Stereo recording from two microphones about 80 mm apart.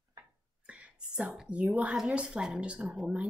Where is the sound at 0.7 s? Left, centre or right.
Centre.